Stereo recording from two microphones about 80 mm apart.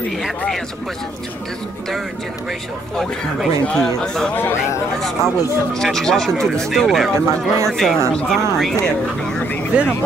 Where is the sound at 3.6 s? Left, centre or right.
Centre.